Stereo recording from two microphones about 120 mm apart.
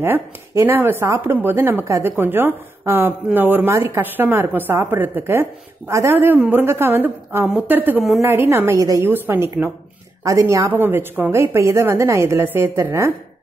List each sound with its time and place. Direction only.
0.0 s a woman's voice: 20° right (ahead or behind)